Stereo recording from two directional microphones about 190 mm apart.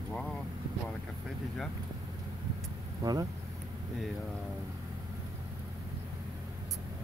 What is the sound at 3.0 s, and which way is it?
Speech, 20° right (ahead or behind).